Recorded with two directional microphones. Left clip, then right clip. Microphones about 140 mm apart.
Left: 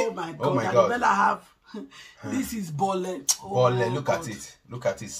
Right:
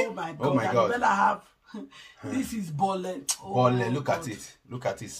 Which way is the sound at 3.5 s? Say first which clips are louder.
Left 1 dB; 25° right (ahead or behind).